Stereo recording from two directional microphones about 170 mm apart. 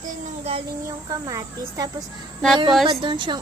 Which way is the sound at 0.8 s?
20° right (ahead or behind).